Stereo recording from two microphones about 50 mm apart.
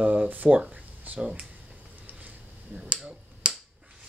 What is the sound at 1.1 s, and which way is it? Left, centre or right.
Speech, centre.